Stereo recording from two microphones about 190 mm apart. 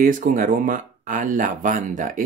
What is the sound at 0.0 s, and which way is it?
Speech, 45° right (ahead or behind).